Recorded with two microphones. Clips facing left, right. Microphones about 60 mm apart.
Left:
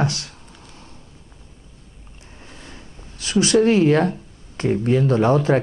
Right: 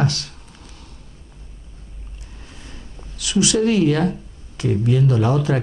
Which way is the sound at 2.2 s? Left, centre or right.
Left.